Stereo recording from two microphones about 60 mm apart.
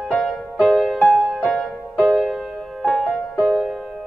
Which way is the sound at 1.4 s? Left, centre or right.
Centre.